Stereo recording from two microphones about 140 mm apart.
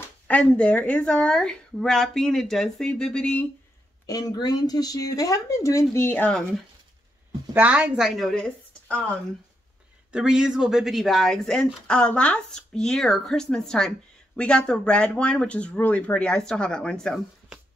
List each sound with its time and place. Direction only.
0.3 s a woman's voice: 10° left (ahead or behind)
4.0 s speech: 25° left (ahead or behind); by 6.4 s 10° left (ahead or behind)
7.5 s speech: 10° right (ahead or behind); by 9.0 s 10° left (ahead or behind)
10.1 s speech: 5° right (ahead or behind)